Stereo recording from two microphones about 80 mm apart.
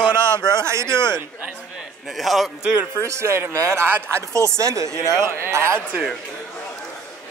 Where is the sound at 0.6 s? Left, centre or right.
Right.